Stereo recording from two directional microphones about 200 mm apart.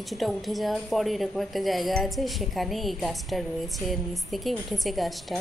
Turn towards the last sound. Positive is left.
turn(degrees=0)  # may be behind; listen again after turning